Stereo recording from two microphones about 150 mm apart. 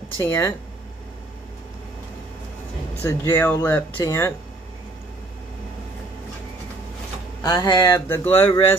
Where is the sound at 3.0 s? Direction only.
15° left (ahead or behind).